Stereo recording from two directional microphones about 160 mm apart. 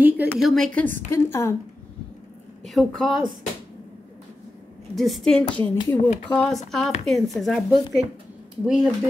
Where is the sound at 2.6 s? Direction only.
Centre (ahead or behind).